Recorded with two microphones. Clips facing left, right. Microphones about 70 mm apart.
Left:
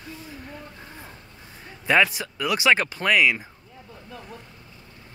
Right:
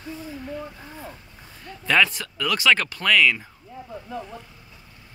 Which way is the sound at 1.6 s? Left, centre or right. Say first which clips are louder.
Even; centre.